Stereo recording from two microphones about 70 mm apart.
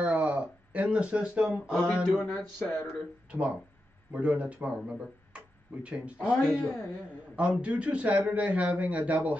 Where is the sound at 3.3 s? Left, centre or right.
Centre.